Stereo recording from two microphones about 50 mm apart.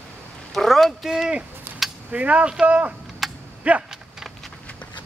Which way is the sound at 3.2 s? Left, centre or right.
Centre.